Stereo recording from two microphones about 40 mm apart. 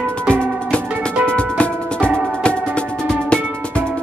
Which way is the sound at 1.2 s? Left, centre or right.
Left.